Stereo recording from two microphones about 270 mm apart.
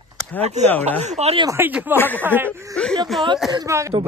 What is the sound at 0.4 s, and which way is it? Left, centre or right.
Speech, right.